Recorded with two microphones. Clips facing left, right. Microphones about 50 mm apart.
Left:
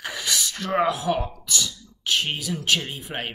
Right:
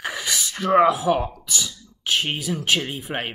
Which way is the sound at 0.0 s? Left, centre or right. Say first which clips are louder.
Right 1 dB; centre.